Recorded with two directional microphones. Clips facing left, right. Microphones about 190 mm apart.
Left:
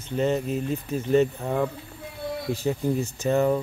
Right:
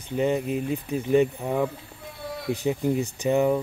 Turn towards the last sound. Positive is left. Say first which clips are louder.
# even
turn(degrees=-15)  # may be behind; listen again after turning